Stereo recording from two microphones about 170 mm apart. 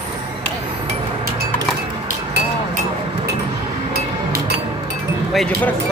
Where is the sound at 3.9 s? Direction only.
70° right (ahead or behind).